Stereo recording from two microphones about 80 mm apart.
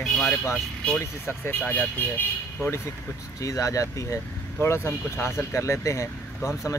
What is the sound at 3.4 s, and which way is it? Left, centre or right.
Speech, left.